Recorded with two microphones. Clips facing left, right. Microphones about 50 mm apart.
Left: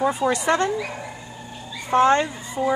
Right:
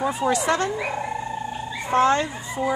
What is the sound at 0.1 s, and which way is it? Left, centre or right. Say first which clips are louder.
Speech: left 1 dB; centre.